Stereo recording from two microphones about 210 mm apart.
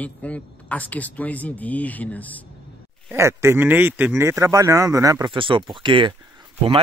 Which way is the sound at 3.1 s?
10° right (ahead or behind).